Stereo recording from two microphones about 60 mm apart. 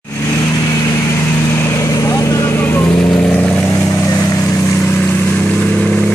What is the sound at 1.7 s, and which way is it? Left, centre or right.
Vehicle, left.